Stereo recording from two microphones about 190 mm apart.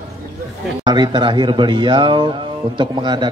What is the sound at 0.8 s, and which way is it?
A man's voice, 25° right (ahead or behind).